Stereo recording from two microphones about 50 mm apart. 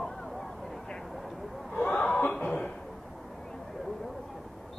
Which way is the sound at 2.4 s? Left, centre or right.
Left.